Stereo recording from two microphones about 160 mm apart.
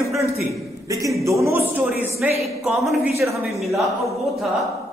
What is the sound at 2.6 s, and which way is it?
Speech, centre (ahead or behind).